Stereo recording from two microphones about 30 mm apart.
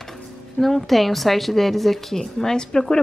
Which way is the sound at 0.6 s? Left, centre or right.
Centre.